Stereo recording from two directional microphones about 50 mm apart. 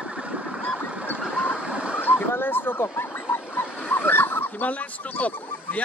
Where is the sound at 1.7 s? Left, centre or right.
Right.